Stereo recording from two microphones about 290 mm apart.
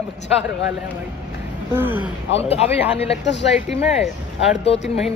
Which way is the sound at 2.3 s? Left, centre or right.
Left.